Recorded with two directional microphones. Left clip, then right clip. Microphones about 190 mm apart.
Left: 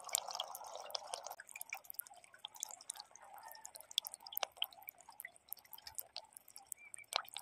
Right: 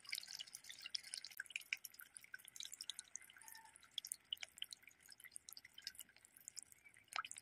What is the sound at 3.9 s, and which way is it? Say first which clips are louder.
Drip: left 6 dB; 50° left (ahead or behind).